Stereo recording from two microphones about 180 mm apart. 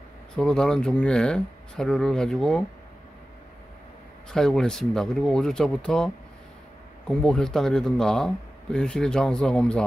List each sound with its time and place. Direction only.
0.4 s speech: 5° left (ahead or behind)
4.3 s speech: 5° left (ahead or behind)